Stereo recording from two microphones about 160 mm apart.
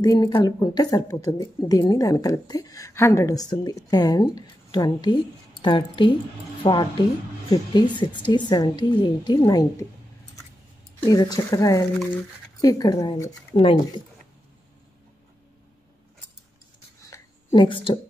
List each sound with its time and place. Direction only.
0.0 s a woman's voice: 25° left (ahead or behind)
11.1 s a woman's voice: 25° left (ahead or behind)
13.6 s speech: 35° left (ahead or behind)
17.5 s speech: 30° left (ahead or behind)